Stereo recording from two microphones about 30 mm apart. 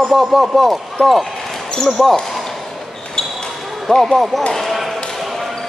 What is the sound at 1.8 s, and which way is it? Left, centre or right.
Speech, centre.